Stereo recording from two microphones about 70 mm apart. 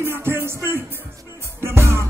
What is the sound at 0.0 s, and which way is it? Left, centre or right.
Music, right.